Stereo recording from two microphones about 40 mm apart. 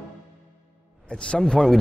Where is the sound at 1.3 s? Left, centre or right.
Left.